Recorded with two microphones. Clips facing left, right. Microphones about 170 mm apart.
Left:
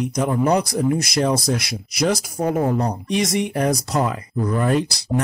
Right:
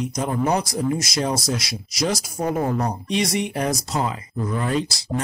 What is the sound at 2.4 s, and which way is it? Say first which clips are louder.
Speech: left 1 dB; 30° left (ahead or behind).